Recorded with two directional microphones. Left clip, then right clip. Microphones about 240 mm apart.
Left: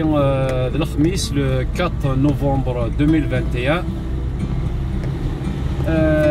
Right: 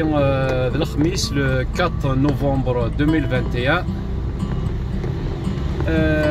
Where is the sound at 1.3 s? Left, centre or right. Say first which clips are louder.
Right 1 dB; centre.